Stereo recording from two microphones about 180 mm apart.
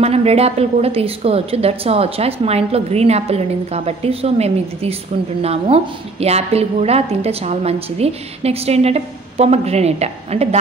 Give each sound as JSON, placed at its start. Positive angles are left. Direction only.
{"t": 0.0, "sound": "a woman's voice", "side_deg": -35}